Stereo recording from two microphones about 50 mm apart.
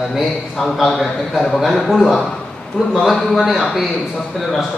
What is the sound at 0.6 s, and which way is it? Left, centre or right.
A man's voice, centre.